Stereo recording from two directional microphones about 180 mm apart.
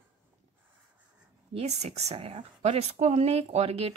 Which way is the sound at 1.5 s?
35° right (ahead or behind).